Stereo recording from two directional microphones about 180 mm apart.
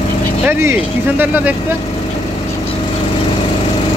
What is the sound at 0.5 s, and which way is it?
Speech, 10° right (ahead or behind).